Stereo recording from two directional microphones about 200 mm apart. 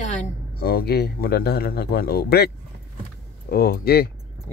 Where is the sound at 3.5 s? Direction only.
50° left (ahead or behind).